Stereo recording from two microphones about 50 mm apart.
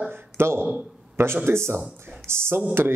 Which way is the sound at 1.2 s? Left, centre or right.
Right.